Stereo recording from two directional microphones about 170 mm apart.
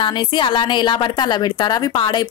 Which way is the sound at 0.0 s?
25° left (ahead or behind).